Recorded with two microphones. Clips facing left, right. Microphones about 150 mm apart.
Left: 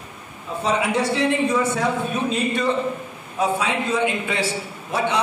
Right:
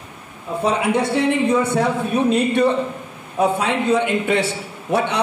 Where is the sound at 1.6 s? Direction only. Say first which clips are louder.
Right 3 dB; 60° right (ahead or behind).